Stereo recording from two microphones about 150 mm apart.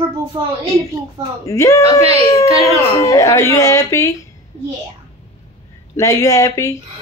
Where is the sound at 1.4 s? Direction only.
20° left (ahead or behind).